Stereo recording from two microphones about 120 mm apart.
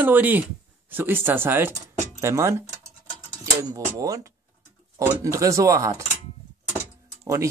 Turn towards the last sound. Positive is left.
turn(degrees=-25)  # may be behind; listen again after turning